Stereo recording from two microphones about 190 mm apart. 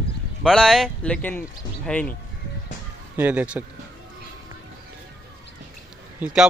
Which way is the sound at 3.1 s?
10° right (ahead or behind).